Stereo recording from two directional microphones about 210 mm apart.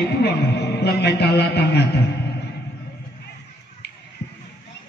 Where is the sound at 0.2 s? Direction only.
50° left (ahead or behind).